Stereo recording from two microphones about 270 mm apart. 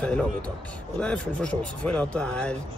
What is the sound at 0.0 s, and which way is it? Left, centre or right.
Speech, centre.